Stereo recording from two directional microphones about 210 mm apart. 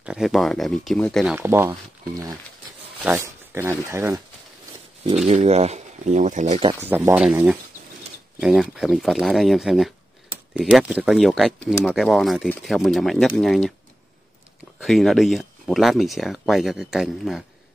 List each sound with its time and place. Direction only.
0.0 s speech: 5° right (ahead or behind)
1.3 s speech: 10° right (ahead or behind)
3.0 s a sound: 10° right (ahead or behind)
3.8 s speech: 15° right (ahead or behind)
5.1 s speech: 30° right (ahead or behind)
6.7 s speech: 10° right (ahead or behind)
14.8 s speech: centre (ahead or behind)